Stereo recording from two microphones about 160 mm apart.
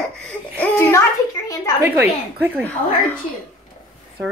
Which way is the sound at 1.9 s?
15° right (ahead or behind).